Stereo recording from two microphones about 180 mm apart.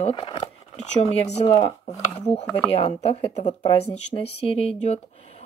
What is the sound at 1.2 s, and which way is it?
Speech, 35° left (ahead or behind).